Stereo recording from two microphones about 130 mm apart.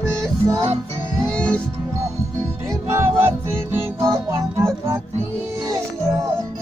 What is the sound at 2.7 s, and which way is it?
Music, 20° right (ahead or behind).